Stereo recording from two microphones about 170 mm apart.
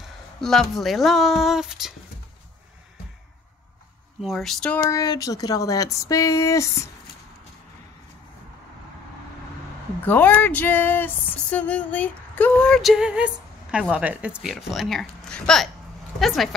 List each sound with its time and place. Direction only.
0.4 s speech: 5° left (ahead or behind)
4.2 s speech: centre (ahead or behind)
4.7 s a sound: 20° left (ahead or behind)
10.0 s speech: 10° left (ahead or behind)